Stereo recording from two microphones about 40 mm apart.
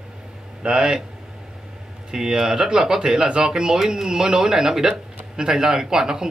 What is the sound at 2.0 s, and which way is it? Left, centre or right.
Speech, centre.